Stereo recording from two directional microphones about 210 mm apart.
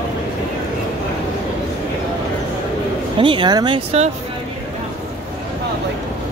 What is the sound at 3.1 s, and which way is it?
Speech, 25° right (ahead or behind).